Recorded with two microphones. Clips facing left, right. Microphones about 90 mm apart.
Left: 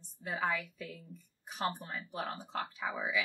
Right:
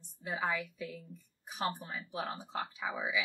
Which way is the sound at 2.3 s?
20° right (ahead or behind).